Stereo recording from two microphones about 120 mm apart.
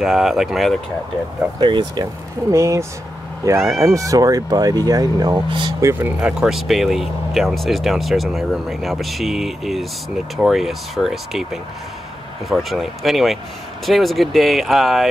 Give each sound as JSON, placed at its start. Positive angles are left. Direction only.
{"t": 0.0, "sound": "speech", "side_deg": 0}
{"t": 1.6, "sound": "speech", "side_deg": -40}
{"t": 2.5, "sound": "speech", "side_deg": -25}
{"t": 5.8, "sound": "speech", "side_deg": -20}
{"t": 6.1, "sound": "speech", "side_deg": -5}